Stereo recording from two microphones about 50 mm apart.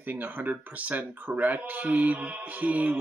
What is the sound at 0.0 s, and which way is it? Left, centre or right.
Speech, right.